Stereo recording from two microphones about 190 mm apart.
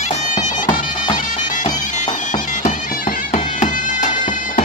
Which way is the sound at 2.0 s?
40° left (ahead or behind).